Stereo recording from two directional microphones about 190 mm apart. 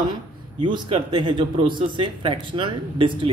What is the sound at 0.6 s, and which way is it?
Speech, 25° right (ahead or behind).